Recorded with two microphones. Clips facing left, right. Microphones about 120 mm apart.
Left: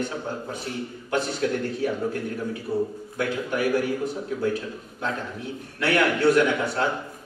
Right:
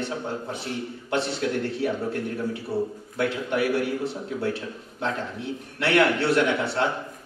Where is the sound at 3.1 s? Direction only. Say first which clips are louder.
Right 1 dB; 30° right (ahead or behind).